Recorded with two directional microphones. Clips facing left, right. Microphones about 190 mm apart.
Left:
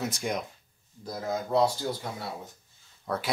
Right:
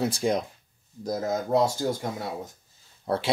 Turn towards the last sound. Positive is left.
turn(degrees=-30)  # may be behind; listen again after turning